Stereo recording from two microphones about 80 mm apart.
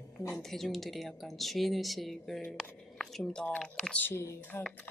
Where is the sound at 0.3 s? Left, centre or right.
Centre.